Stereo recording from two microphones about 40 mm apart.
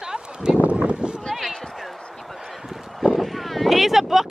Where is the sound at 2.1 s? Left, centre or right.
Centre.